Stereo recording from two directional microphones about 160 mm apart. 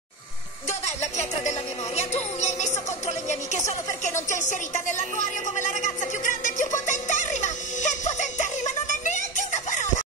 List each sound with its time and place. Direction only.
0.7 s a sound: 45° left (ahead or behind)
1.4 s speech: 45° left (ahead or behind)
4.0 s music: 50° left (ahead or behind)